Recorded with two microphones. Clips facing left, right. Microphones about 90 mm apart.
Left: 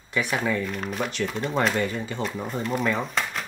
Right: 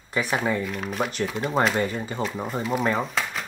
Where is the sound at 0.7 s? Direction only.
Centre (ahead or behind).